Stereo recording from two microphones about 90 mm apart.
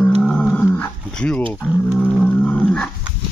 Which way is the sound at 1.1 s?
10° left (ahead or behind).